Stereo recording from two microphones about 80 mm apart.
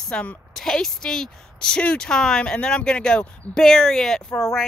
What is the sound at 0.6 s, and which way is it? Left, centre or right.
Speech, centre.